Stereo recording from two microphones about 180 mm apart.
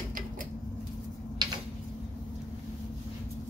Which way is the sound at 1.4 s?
20° right (ahead or behind).